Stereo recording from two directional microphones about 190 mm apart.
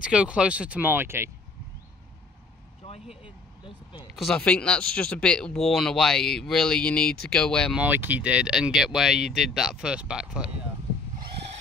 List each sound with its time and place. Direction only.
0.0 s speech: 5° right (ahead or behind)
3.6 s speech: 25° left (ahead or behind)
4.1 s speech: centre (ahead or behind)
7.8 s speech: 10° right (ahead or behind)